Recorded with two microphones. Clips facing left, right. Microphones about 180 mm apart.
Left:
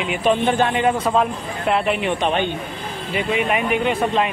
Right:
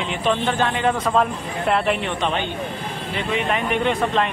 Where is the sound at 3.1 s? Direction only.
10° left (ahead or behind).